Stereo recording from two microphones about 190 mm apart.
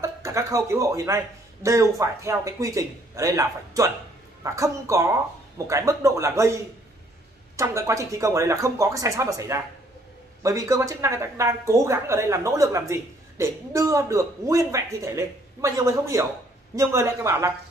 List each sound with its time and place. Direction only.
0.0 s speech: 15° right (ahead or behind)